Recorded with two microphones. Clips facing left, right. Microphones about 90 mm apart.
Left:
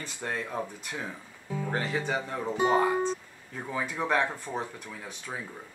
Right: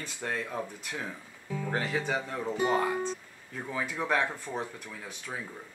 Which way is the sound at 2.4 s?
20° left (ahead or behind).